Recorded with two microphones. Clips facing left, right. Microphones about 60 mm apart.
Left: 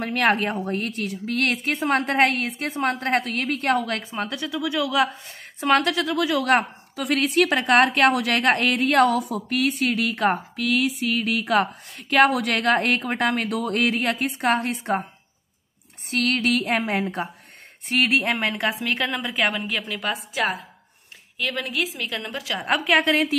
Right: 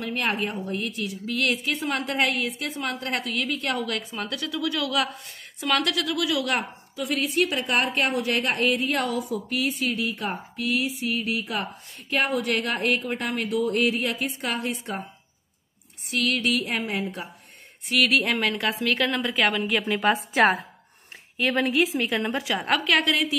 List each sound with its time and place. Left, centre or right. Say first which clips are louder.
0.0 s a woman's voice: left 6 dB; left
7.0 s a woman's voice: left 4 dB; left
16.1 s a woman's voice: left 2 dB; left
17.8 s a woman's voice: left 1 dB; left
18.9 s speech: right 1 dB; centre
19.8 s a woman's voice: right 5 dB; right
21.4 s a woman's voice: right 4 dB; right
22.8 s a woman's voice: left 5 dB; left